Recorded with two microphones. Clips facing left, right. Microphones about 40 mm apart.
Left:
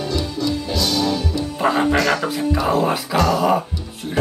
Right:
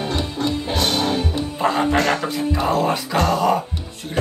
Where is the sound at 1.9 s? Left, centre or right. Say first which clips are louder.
Left 1 dB; right.